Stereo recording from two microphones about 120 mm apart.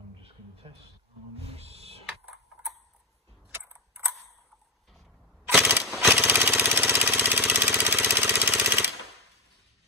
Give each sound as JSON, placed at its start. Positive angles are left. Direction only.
{"t": 1.4, "sound": "owl", "side_deg": -55}
{"t": 2.3, "sound": "mechanisms", "side_deg": 0}
{"t": 3.5, "sound": "mechanisms", "side_deg": -20}
{"t": 5.5, "sound": "a sound", "side_deg": -10}
{"t": 6.0, "sound": "jackhammer", "side_deg": -10}